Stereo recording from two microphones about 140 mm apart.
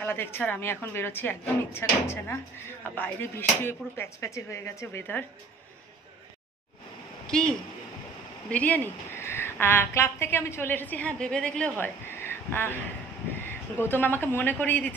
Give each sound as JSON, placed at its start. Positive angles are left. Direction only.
{"t": 0.0, "sound": "a woman's voice", "side_deg": 15}
{"t": 7.2, "sound": "a woman's voice", "side_deg": 5}
{"t": 11.8, "sound": "a sound", "side_deg": 15}
{"t": 13.5, "sound": "a woman's voice", "side_deg": 15}